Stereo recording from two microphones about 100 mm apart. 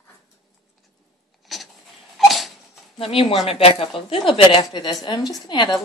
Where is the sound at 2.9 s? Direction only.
70° left (ahead or behind).